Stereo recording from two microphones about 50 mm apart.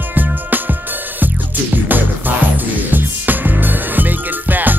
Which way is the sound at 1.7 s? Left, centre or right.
Right.